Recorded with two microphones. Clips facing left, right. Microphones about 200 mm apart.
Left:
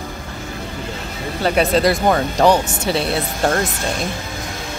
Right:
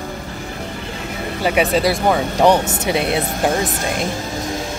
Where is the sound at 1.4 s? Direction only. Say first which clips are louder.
Left 1 dB; 10° right (ahead or behind).